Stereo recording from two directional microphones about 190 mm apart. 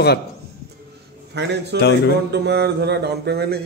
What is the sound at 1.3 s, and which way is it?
Speech, 65° right (ahead or behind).